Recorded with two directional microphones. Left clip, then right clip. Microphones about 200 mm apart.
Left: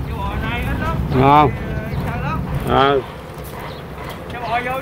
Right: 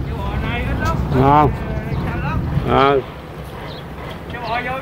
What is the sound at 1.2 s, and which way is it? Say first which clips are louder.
Speech: left 1 dB; 5° right (ahead or behind).